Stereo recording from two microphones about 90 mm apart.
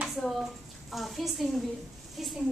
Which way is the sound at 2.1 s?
Centre (ahead or behind).